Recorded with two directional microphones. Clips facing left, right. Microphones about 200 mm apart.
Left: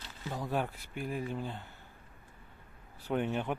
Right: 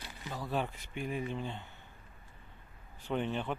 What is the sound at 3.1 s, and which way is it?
Speech, 10° left (ahead or behind).